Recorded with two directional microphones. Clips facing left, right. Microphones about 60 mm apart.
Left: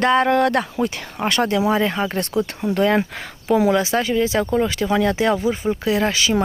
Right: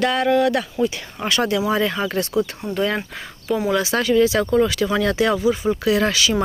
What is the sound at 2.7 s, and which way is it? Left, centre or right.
Speech, left.